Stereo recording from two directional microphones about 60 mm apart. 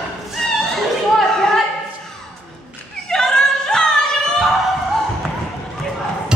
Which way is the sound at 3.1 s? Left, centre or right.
Centre.